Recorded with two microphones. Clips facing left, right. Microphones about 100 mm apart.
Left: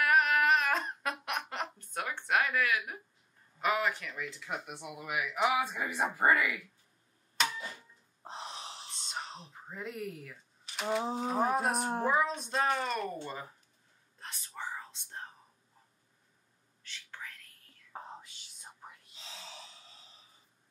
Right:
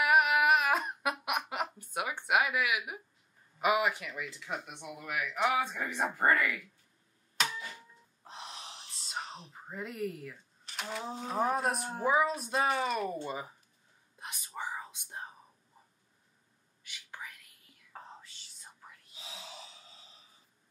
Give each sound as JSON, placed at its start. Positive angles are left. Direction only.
{"t": 0.0, "sound": "a sound", "side_deg": -10}
{"t": 3.6, "sound": "speech", "side_deg": -10}
{"t": 8.2, "sound": "gasp", "side_deg": 35}
{"t": 8.9, "sound": "whispering", "side_deg": 0}
{"t": 11.2, "sound": "speech", "side_deg": 0}
{"t": 14.1, "sound": "whispering", "side_deg": -15}
{"t": 16.8, "sound": "whispering", "side_deg": -15}
{"t": 17.9, "sound": "whispering", "side_deg": 15}
{"t": 19.1, "sound": "gasp", "side_deg": -10}